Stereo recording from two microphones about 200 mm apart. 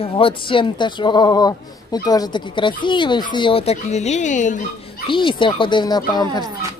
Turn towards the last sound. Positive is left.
turn(degrees=20)  # may be behind; listen again after turning